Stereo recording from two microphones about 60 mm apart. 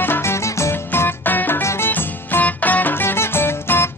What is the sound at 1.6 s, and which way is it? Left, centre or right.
Music, left.